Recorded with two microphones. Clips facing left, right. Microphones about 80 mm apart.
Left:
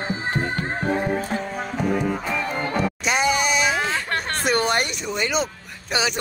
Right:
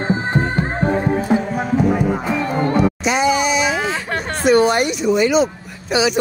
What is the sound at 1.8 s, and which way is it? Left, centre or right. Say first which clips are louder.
Music: right 5 dB; right.